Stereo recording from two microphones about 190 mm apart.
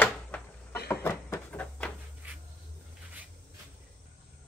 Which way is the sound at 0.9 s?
15° left (ahead or behind).